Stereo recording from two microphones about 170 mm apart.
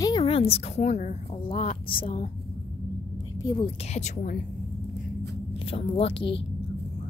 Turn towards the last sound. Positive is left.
turn(degrees=35)  # may be behind; listen again after turning